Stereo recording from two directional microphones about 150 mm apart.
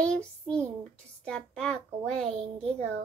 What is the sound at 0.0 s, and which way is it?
A child's voice, 5° left (ahead or behind).